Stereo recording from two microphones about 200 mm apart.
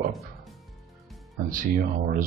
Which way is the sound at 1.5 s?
40° right (ahead or behind).